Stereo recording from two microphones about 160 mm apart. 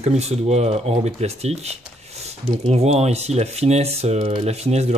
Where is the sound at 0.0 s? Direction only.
45° right (ahead or behind).